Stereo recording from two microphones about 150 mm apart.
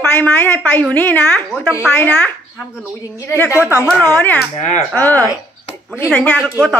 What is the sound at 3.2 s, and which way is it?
A man's voice, 15° left (ahead or behind).